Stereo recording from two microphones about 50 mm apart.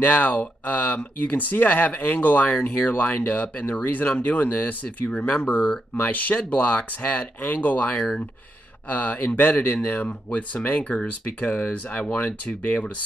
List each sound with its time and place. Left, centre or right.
0.0 s speech: left